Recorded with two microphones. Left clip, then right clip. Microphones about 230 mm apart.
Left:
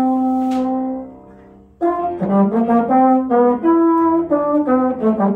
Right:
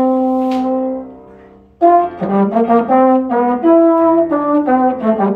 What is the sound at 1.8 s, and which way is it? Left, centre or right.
Brass instrument, left.